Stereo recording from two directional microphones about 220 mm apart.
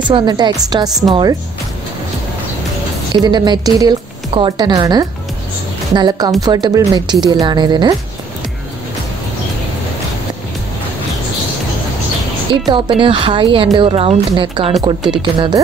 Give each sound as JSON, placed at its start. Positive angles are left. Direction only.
{"t": 0.1, "sound": "a woman's voice", "side_deg": -20}
{"t": 3.2, "sound": "a woman's voice", "side_deg": -20}
{"t": 12.6, "sound": "a woman's voice", "side_deg": -20}